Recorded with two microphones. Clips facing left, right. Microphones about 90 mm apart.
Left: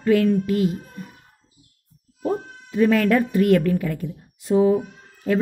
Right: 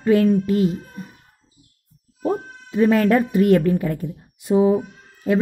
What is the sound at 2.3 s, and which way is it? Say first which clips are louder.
Speech: right 2 dB; 20° right (ahead or behind).